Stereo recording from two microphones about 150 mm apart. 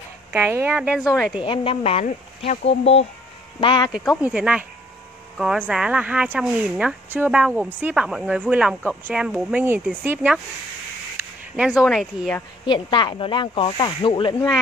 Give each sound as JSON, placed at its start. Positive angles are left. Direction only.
{"t": 0.3, "sound": "speech", "side_deg": -15}
{"t": 1.4, "sound": "speech", "side_deg": 35}
{"t": 3.6, "sound": "speech", "side_deg": 30}
{"t": 3.9, "sound": "speech", "side_deg": -5}
{"t": 11.5, "sound": "speech", "side_deg": -5}
{"t": 12.6, "sound": "speech", "side_deg": 30}